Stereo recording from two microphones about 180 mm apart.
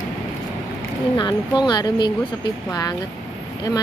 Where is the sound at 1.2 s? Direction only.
25° left (ahead or behind).